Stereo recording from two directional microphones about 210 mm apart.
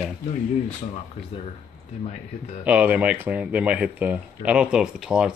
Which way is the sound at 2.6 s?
5° right (ahead or behind).